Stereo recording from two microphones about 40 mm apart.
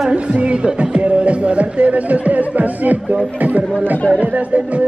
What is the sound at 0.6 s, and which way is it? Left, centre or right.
Music, right.